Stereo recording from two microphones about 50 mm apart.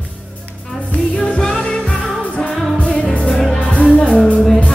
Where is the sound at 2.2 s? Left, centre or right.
Left.